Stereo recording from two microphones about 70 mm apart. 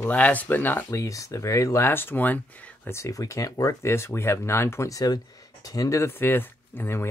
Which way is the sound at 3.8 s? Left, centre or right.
Left.